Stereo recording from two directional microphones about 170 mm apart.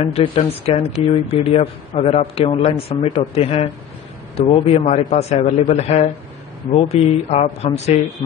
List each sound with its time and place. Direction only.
0.0 s speech: 40° left (ahead or behind)